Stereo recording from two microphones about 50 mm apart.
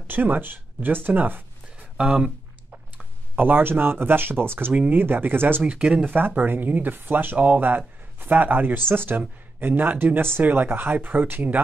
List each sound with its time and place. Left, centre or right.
0.1 s speech: right
3.3 s speech: right
4.7 s speech: right
5.0 s speech: right
5.7 s speech: right
6.1 s speech: right
7.3 s speech: right
7.6 s speech: right